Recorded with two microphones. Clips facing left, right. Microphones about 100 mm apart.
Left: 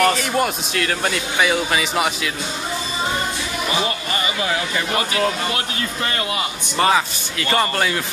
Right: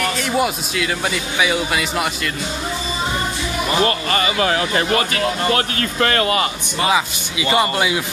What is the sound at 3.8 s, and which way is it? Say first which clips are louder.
Speech: right 5 dB; 75° right (ahead or behind).